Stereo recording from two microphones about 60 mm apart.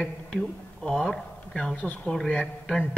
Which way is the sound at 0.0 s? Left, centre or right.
Centre.